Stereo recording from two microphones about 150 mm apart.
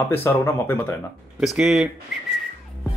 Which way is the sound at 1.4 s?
5° right (ahead or behind).